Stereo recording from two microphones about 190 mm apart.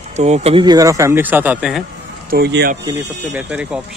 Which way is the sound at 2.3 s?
60° right (ahead or behind).